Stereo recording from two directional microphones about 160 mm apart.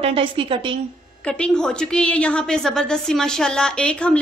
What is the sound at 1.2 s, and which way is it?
A woman's voice, 5° left (ahead or behind).